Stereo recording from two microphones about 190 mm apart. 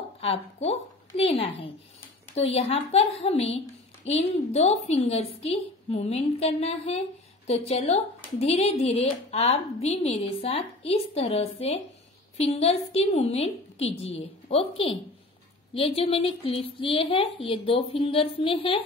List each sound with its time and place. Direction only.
0.2 s a woman's voice: 30° left (ahead or behind)